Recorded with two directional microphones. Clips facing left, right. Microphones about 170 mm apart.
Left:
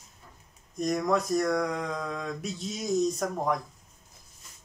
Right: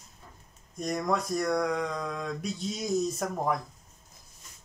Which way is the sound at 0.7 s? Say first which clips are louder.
Left 3 dB; centre (ahead or behind).